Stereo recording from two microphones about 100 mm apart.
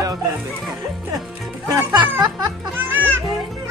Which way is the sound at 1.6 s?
45° right (ahead or behind).